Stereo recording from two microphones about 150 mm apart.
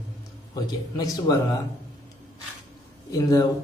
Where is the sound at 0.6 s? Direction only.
25° left (ahead or behind).